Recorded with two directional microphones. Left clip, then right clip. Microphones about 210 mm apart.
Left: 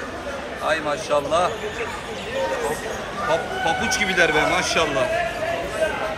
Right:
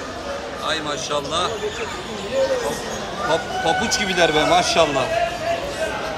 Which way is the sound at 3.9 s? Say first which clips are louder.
Left 1 dB; 10° right (ahead or behind).